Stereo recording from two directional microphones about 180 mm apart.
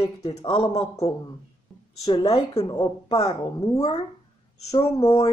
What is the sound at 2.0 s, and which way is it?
Speech, 20° left (ahead or behind).